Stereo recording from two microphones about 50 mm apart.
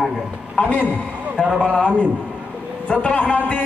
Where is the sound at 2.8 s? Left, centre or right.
Left.